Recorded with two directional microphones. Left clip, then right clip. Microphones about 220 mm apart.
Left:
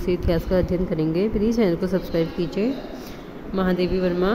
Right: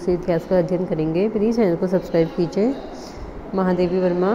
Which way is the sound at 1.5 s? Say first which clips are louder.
Right 3 dB; 5° left (ahead or behind).